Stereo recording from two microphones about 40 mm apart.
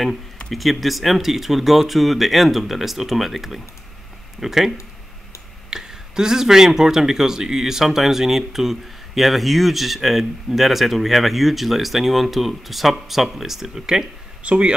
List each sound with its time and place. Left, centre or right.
0.5 s speech: centre
14.4 s a man's voice: right